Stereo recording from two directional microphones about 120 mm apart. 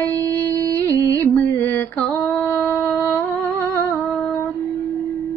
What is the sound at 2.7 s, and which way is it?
Music, 15° left (ahead or behind).